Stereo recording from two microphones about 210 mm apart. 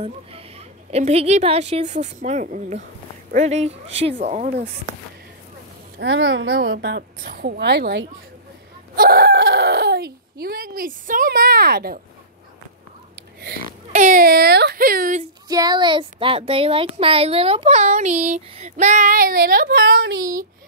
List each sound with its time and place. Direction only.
0.0 s speech: 30° right (ahead or behind)
5.9 s a woman's voice: 60° right (ahead or behind)
8.9 s chicken: 45° right (ahead or behind)
13.4 s speech: 40° right (ahead or behind)
15.4 s speech: 20° right (ahead or behind); by 20.2 s 50° right (ahead or behind)